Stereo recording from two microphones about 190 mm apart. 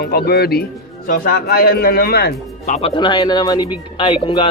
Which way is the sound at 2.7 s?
30° left (ahead or behind).